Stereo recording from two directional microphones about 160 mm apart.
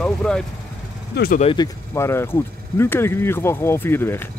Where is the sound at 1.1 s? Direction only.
80° left.